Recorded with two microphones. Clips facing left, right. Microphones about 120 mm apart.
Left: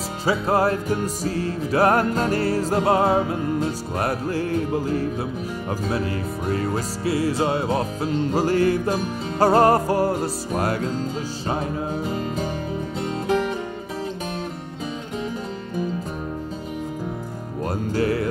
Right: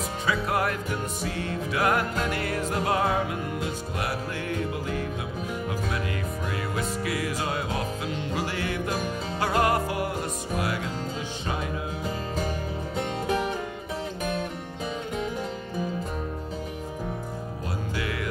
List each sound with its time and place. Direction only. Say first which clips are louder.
0.2 s music: left 7 dB; 30° left (ahead or behind)
17.9 s music: left 11 dB; 40° left (ahead or behind)